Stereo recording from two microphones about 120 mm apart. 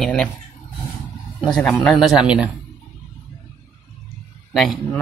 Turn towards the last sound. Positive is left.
turn(degrees=0)  # may be behind; listen again after turning